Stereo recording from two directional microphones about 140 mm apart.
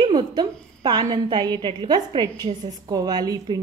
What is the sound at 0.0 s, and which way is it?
A woman's voice, 35° right (ahead or behind).